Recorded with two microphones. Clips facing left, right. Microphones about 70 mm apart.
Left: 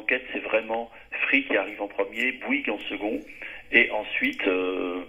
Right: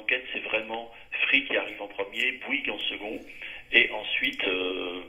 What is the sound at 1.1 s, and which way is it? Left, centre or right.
A man's voice, left.